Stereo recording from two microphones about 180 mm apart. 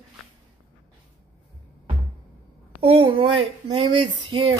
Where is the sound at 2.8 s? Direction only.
30° right (ahead or behind).